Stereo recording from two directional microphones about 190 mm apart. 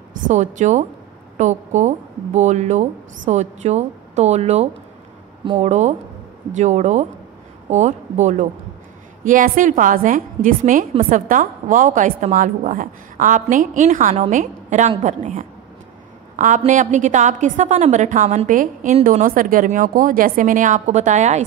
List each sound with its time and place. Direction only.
0.3 s a woman's voice: 40° right (ahead or behind)
5.7 s a woman's voice: 40° right (ahead or behind)